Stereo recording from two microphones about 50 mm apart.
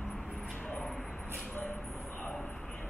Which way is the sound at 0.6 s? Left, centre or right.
Left.